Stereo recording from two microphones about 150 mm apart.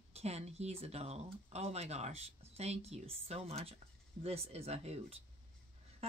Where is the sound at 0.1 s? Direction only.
45° right (ahead or behind).